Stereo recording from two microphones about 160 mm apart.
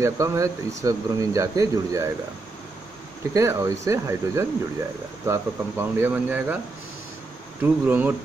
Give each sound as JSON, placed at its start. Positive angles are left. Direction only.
{"t": 0.0, "sound": "speech", "side_deg": -20}
{"t": 3.3, "sound": "speech", "side_deg": -20}
{"t": 7.6, "sound": "speech", "side_deg": -10}